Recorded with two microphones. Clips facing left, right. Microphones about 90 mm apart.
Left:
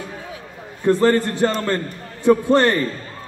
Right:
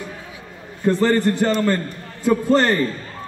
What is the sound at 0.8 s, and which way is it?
Speech, 15° left (ahead or behind).